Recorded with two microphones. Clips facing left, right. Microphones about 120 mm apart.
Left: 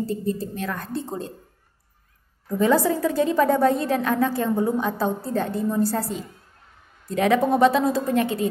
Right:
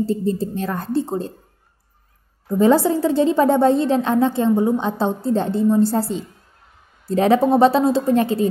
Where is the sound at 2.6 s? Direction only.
30° right (ahead or behind).